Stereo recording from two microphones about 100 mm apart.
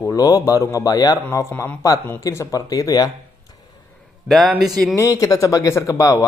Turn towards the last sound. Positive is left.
turn(degrees=35)  # may be behind; listen again after turning